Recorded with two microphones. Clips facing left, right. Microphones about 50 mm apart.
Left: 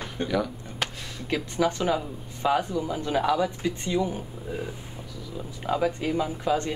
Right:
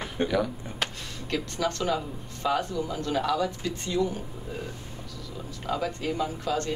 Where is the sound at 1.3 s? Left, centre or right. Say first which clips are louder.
Left 4 dB; centre.